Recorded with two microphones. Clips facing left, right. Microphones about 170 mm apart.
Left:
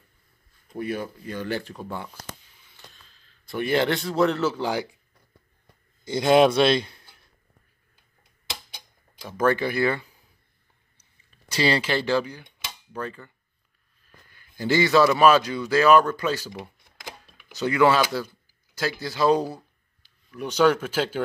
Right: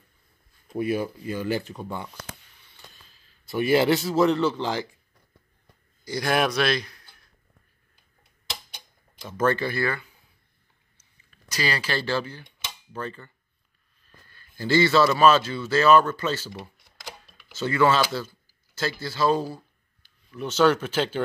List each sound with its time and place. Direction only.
0.7 s speech: 10° right (ahead or behind)
3.4 s speech: 5° right (ahead or behind); by 4.8 s 10° left (ahead or behind)
6.0 s speech: 25° left (ahead or behind)
8.7 s tick-tock: 10° left (ahead or behind)
11.2 s speech: 25° left (ahead or behind)
12.5 s a sound: 10° left (ahead or behind)
14.3 s speech: 15° left (ahead or behind)